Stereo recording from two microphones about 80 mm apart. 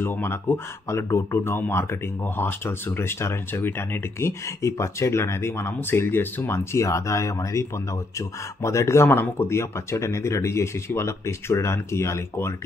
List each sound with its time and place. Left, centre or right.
0.0 s speech: left